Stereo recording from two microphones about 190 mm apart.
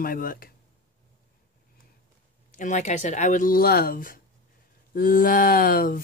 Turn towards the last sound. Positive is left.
turn(degrees=50)  # may be behind; listen again after turning